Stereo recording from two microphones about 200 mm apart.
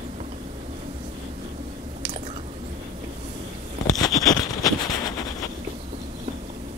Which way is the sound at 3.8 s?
20° left (ahead or behind).